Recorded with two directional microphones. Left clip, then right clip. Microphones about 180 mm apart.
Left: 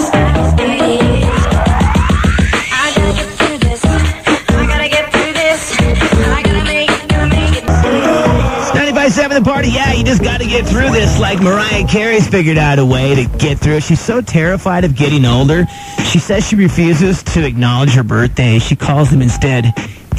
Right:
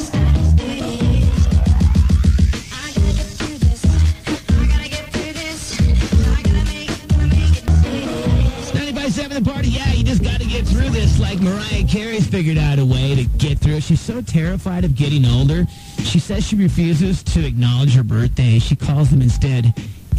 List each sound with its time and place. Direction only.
0.9 s music: 30° left (ahead or behind)
5.1 s music: 35° left (ahead or behind)
8.7 s music: 40° left (ahead or behind)
11.1 s speech: 40° left (ahead or behind)